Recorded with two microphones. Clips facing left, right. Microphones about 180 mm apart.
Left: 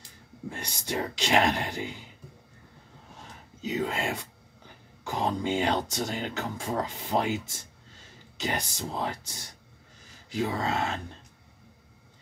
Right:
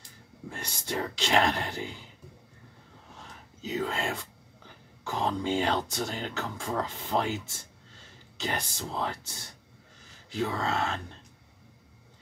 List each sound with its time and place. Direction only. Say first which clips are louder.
0.5 s speech: left 2 dB; 15° left (ahead or behind)
3.6 s speech: left 1 dB; 15° left (ahead or behind)